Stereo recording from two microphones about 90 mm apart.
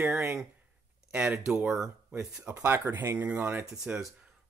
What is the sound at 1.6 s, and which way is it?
Speech, 10° right (ahead or behind).